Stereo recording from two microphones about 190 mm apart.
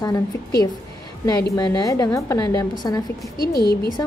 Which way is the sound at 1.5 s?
20° left (ahead or behind).